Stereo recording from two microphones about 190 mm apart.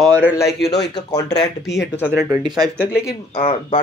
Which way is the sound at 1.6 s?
65° left (ahead or behind).